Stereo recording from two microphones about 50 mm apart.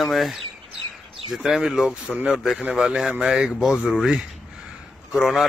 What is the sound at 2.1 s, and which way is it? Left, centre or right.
Speech, right.